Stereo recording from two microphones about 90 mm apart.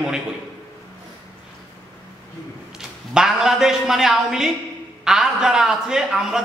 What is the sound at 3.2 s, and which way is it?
A man's voice, 5° right (ahead or behind).